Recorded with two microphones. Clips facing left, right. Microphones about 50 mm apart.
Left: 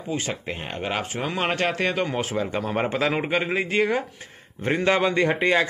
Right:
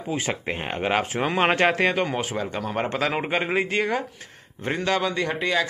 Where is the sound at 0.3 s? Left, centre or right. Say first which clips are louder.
Right 3 dB; centre.